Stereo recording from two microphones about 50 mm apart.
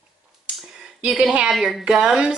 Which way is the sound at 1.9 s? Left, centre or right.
Centre.